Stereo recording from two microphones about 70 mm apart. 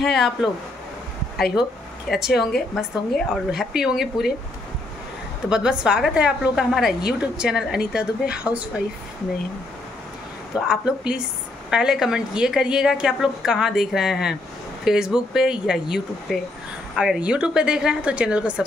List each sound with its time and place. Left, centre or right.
0.0 s speech: centre
2.0 s speech: centre
2.5 s speech: centre
3.5 s speech: centre
5.5 s a woman's voice: centre
6.6 s a woman's voice: centre
10.7 s a woman's voice: centre
17.2 s a woman's voice: centre